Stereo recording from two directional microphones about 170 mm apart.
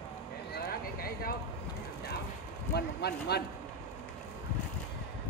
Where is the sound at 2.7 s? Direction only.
75° left (ahead or behind).